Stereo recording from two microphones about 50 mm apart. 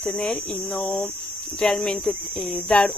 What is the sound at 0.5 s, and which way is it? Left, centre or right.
Speech, left.